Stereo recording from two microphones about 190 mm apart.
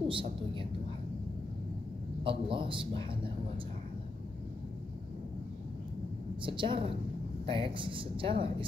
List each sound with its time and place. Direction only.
0.1 s a sound: 25° right (ahead or behind)
2.2 s speech: 30° right (ahead or behind)
6.4 s speech: 25° right (ahead or behind)